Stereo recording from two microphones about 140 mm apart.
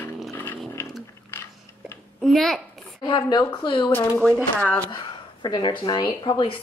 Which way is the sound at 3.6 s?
30° left (ahead or behind).